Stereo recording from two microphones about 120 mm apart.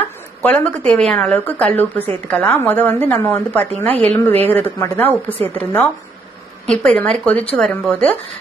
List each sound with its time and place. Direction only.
0.4 s a woman's voice: 10° left (ahead or behind)
3.9 s a woman's voice: 60° right (ahead or behind)
4.2 s a woman's voice: 15° left (ahead or behind)